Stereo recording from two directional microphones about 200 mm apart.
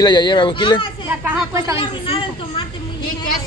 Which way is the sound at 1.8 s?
25° left (ahead or behind).